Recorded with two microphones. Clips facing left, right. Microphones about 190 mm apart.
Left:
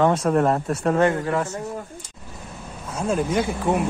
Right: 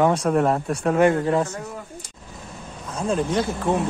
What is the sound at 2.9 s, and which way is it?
Speech, 5° left (ahead or behind).